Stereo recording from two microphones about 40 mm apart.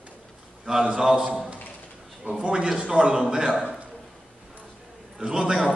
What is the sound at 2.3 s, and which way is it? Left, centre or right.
Speech, right.